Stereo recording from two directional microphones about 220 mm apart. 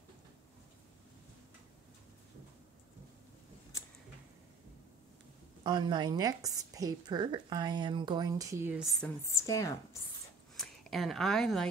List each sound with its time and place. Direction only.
5.6 s a woman's voice: 20° right (ahead or behind)
9.0 s a woman's voice: 15° left (ahead or behind)
10.5 s speech: centre (ahead or behind)